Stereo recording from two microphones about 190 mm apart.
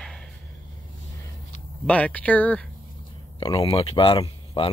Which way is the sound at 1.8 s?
5° left (ahead or behind).